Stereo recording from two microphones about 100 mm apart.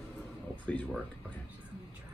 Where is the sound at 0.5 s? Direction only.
15° left (ahead or behind).